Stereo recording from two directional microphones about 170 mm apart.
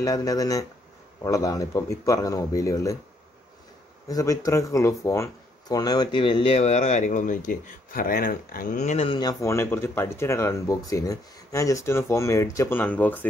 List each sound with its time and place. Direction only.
0.0 s speech: 20° left (ahead or behind)
4.1 s speech: 20° left (ahead or behind)